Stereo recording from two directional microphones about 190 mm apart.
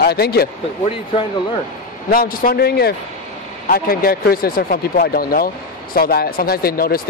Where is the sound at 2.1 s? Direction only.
50° left (ahead or behind).